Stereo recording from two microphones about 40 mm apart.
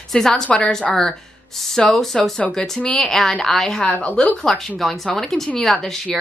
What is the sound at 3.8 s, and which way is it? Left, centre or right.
Speech, left.